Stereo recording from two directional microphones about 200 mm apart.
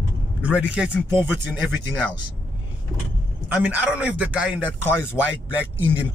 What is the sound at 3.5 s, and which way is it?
Speech, 5° right (ahead or behind).